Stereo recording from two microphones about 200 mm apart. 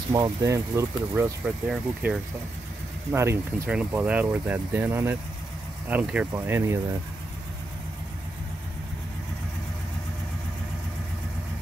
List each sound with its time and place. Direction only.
0.1 s speech: 15° right (ahead or behind)